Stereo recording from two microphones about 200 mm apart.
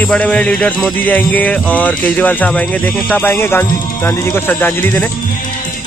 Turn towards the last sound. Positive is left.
turn(degrees=10)  # may be behind; listen again after turning